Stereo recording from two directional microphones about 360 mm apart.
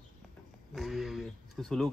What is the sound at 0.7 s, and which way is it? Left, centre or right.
Speech, centre.